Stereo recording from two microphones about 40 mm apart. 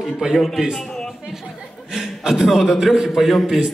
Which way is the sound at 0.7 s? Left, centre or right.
Centre.